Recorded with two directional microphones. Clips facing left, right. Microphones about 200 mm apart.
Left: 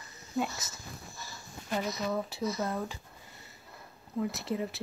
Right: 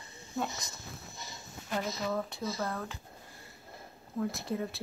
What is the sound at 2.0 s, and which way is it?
Speech, 5° left (ahead or behind).